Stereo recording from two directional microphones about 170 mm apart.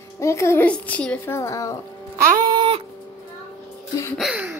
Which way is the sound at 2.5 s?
30° right (ahead or behind).